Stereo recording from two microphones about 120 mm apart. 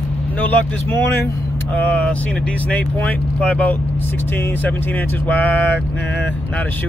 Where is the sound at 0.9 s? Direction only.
15° left (ahead or behind).